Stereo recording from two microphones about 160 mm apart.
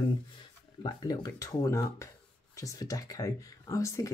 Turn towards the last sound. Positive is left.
turn(degrees=20)  # may be behind; listen again after turning